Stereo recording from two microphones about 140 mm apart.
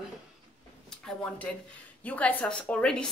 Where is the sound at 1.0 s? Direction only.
10° left (ahead or behind).